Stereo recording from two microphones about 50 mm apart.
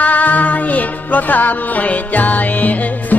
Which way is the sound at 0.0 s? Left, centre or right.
Left.